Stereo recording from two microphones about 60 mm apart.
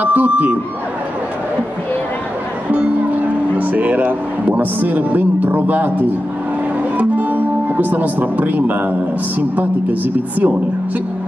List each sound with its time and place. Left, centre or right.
0.0 s a woman's voice: right
2.7 s speech: right
7.0 s music: right
9.4 s a woman's voice: right